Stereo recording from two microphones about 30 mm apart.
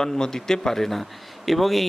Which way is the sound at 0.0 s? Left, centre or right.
Centre.